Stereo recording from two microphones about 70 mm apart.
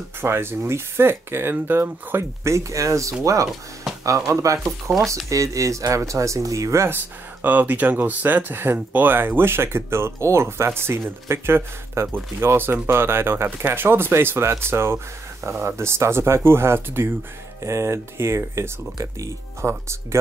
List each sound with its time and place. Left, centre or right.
0.2 s speech: right
3.9 s music: centre
4.3 s speech: right
4.9 s speech: centre
5.3 s speech: right
7.4 s speech: right